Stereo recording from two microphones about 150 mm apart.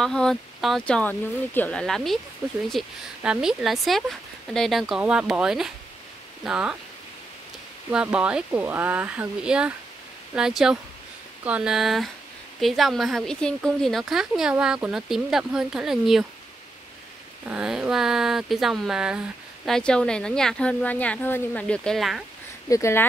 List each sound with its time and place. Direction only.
0.0 s speech: 5° left (ahead or behind)
7.9 s speech: 5° right (ahead or behind)
17.5 s speech: 5° right (ahead or behind)
22.7 s speech: 20° left (ahead or behind)